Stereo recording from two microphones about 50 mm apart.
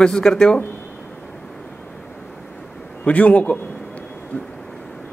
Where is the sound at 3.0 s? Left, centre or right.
Left.